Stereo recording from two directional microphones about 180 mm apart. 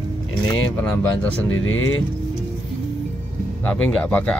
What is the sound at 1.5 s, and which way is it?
Speech, 90° left.